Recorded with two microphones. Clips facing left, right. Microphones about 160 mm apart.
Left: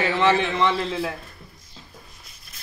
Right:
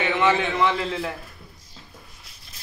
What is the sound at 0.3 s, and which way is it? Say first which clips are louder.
Speech: left 1 dB; 10° right (ahead or behind).